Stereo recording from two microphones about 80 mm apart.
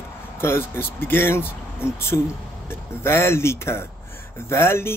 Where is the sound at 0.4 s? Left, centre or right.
Left.